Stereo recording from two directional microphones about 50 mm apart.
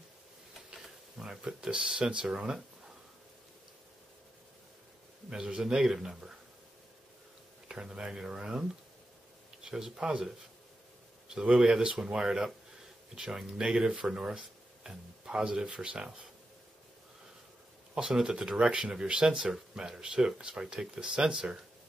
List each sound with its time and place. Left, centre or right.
0.7 s speech: centre
5.3 s speech: centre
7.6 s speech: centre
17.9 s speech: centre